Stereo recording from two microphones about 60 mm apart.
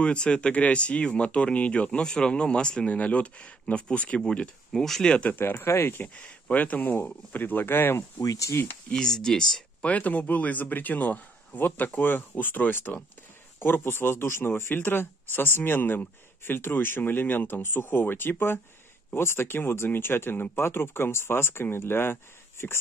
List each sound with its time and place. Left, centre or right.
0.0 s speech: centre
4.2 s speech: centre
5.4 s speech: left
6.5 s speech: left
8.2 s speech: left
8.9 s speech: centre
9.8 s speech: left